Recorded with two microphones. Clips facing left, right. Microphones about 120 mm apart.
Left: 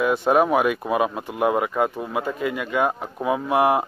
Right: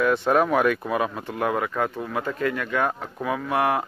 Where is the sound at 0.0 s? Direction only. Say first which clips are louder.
Left 2 dB; 10° left (ahead or behind).